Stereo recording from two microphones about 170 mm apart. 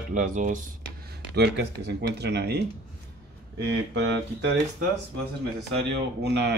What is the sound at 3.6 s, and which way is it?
Speech, 90° right.